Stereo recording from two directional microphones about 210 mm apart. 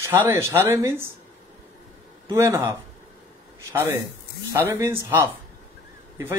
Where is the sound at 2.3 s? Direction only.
15° right (ahead or behind).